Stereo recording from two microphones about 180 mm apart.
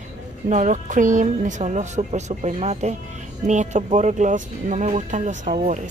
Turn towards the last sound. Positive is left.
turn(degrees=-45)  # may be behind; listen again after turning